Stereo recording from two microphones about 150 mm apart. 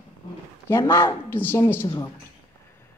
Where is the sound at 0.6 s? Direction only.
15° left (ahead or behind).